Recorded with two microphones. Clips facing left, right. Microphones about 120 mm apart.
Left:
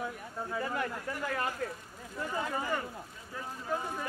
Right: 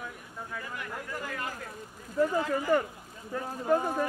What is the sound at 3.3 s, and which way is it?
Speech, 50° right (ahead or behind).